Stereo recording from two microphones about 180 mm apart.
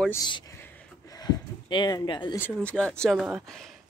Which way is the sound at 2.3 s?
10° left (ahead or behind).